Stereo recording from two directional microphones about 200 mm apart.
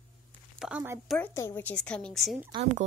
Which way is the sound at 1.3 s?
10° left (ahead or behind).